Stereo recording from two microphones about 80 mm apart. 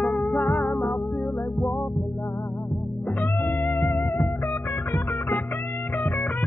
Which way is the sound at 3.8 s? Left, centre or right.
Left.